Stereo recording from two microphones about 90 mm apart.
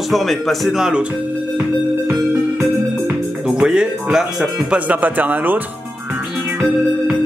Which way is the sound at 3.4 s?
10° right (ahead or behind).